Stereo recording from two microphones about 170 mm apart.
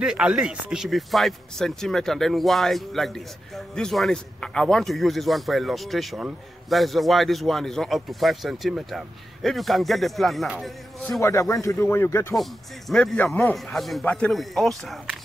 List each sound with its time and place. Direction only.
0.0 s speech: 5° right (ahead or behind)
11.1 s speech: 15° left (ahead or behind)
12.4 s speech: centre (ahead or behind)